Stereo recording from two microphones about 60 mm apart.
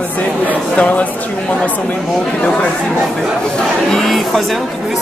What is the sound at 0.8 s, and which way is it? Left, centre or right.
Speech, left.